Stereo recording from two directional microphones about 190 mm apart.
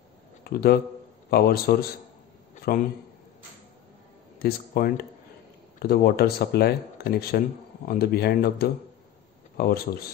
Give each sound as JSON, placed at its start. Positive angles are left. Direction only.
{"t": 0.4, "sound": "speech", "side_deg": 55}
{"t": 4.4, "sound": "speech", "side_deg": 55}